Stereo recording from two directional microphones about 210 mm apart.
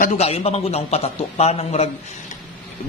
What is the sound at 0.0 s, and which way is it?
A man's voice, 30° left (ahead or behind).